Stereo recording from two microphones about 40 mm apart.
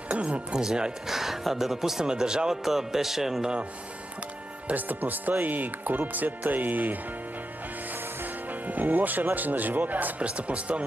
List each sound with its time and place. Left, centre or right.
0.1 s music: right
0.6 s speech: centre
4.7 s speech: right
10.2 s speech: right